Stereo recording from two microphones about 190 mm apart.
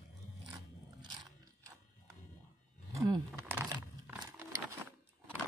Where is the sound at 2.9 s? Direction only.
15° right (ahead or behind).